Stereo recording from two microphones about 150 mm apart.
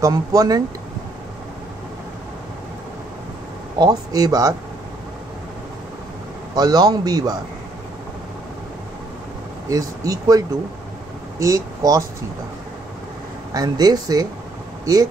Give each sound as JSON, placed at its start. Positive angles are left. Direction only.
{"t": 0.0, "sound": "a man's voice", "side_deg": -25}
{"t": 3.7, "sound": "a man's voice", "side_deg": -25}
{"t": 6.5, "sound": "a man's voice", "side_deg": -25}
{"t": 9.7, "sound": "a man's voice", "side_deg": -25}
{"t": 13.5, "sound": "a man's voice", "side_deg": -25}